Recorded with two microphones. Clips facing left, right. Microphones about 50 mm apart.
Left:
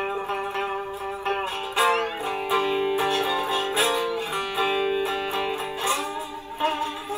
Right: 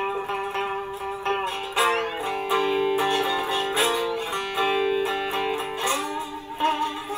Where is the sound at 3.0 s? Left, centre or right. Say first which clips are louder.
Right 1 dB; right.